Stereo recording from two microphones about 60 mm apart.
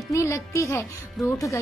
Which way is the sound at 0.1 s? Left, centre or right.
Left.